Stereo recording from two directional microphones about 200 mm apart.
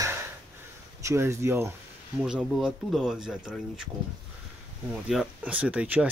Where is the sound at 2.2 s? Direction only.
Centre (ahead or behind).